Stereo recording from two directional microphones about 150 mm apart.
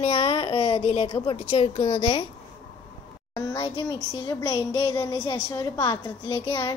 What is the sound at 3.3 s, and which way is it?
A woman's voice, 25° left (ahead or behind).